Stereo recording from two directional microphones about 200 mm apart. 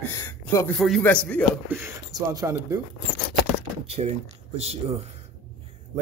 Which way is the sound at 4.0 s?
30° right (ahead or behind).